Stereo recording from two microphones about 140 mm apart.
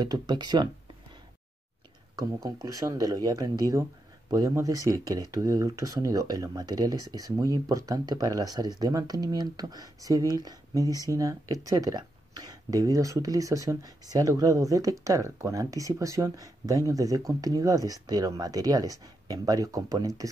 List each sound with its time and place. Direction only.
0.0 s speech: 30° right (ahead or behind)
2.1 s speech: 25° right (ahead or behind)